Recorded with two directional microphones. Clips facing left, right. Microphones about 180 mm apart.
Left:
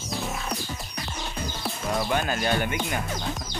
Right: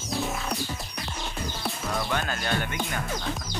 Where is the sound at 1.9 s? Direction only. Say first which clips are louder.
Left 5 dB; 15° left (ahead or behind).